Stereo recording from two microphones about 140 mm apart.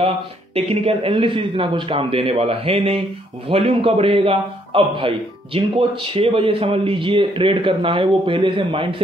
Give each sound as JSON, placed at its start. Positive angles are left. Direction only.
{"t": 0.6, "sound": "a man's voice", "side_deg": -45}